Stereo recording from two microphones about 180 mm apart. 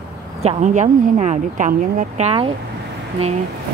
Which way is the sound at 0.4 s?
35° right (ahead or behind).